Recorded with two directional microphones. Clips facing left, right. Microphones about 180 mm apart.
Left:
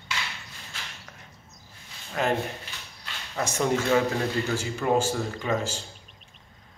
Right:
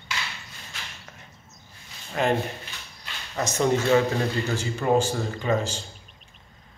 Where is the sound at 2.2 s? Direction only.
Centre (ahead or behind).